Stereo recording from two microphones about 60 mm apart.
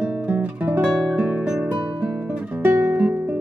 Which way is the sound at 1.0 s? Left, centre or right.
Centre.